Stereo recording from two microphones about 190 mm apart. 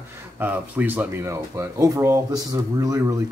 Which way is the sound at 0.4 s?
10° right (ahead or behind).